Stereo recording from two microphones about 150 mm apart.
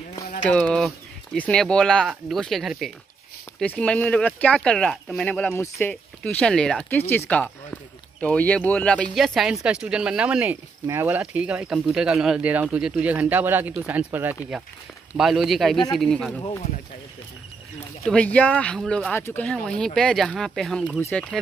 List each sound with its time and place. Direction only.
0.4 s speech: 10° left (ahead or behind)
6.2 s speech: 5° left (ahead or behind)
18.0 s speech: 10° left (ahead or behind)
19.1 s speech: 15° left (ahead or behind)
19.4 s speech: 5° left (ahead or behind)
21.0 s speech: 10° left (ahead or behind)